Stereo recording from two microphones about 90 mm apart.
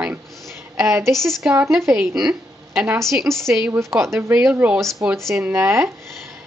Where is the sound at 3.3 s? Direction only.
30° right (ahead or behind).